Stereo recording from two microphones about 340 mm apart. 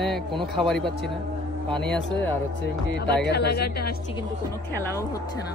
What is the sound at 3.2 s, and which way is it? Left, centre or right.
Speech, left.